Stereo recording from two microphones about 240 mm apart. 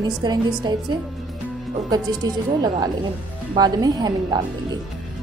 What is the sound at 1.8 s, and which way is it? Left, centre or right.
A woman's voice, centre.